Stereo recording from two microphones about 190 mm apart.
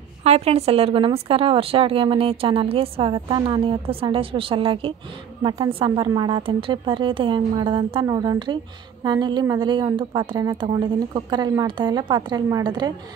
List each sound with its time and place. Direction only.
0.2 s speech: 35° right (ahead or behind)